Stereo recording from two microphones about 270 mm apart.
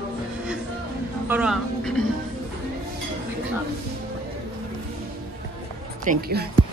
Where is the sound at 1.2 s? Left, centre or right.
Centre.